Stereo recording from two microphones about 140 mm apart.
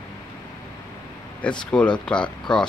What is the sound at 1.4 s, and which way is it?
Speech, 10° left (ahead or behind).